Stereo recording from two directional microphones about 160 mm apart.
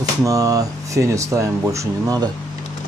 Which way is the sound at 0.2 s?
20° right (ahead or behind).